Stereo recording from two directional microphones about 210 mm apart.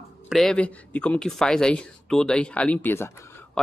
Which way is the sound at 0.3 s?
Centre (ahead or behind).